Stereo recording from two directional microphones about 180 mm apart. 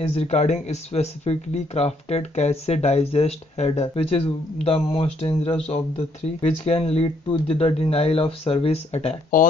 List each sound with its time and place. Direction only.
0.1 s speech: 35° left (ahead or behind)
9.3 s speech: 50° left (ahead or behind)